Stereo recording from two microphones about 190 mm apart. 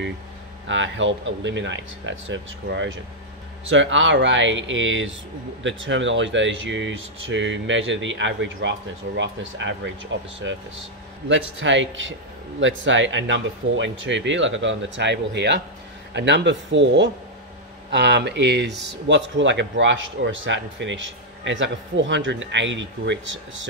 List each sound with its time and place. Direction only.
0.7 s speech: 80° right
11.2 s speech: 80° right